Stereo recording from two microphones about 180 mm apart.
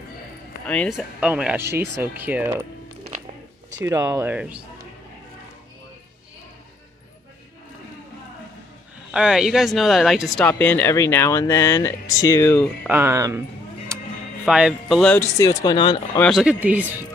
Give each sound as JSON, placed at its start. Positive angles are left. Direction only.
{"t": 0.7, "sound": "speech", "side_deg": 5}
{"t": 3.8, "sound": "speech", "side_deg": -15}
{"t": 9.1, "sound": "speech", "side_deg": -5}
{"t": 12.8, "sound": "speech", "side_deg": -10}
{"t": 14.4, "sound": "speech", "side_deg": -5}
{"t": 15.1, "sound": "speech", "side_deg": 15}
{"t": 16.2, "sound": "speech", "side_deg": 0}